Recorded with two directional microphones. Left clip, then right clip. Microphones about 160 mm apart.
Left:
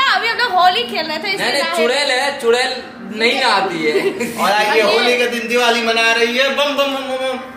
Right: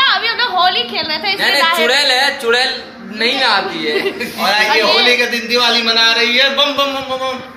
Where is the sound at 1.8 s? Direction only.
15° left (ahead or behind).